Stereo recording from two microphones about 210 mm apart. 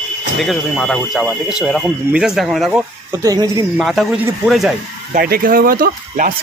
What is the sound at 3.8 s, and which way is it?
Speech, centre (ahead or behind).